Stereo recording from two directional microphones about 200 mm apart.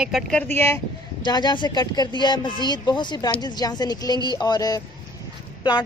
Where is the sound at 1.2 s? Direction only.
20° left (ahead or behind).